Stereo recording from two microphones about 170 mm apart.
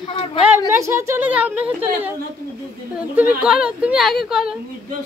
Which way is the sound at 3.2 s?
5° right (ahead or behind).